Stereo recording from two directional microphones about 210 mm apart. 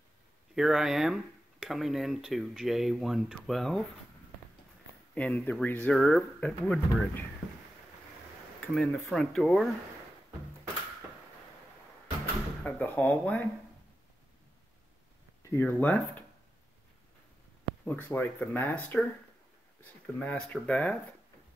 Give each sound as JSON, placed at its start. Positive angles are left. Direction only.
{"t": 0.6, "sound": "speech", "side_deg": 0}
{"t": 5.1, "sound": "speech", "side_deg": 5}
{"t": 8.7, "sound": "speech", "side_deg": 0}
{"t": 12.6, "sound": "speech", "side_deg": 5}
{"t": 15.5, "sound": "speech", "side_deg": 10}
{"t": 17.8, "sound": "speech", "side_deg": 10}
{"t": 20.2, "sound": "speech", "side_deg": 5}